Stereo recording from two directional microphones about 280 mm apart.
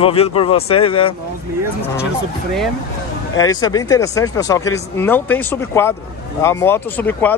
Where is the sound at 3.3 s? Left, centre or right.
Centre.